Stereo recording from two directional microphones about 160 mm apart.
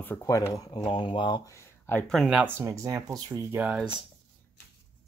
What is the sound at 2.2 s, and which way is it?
Speech, 5° right (ahead or behind).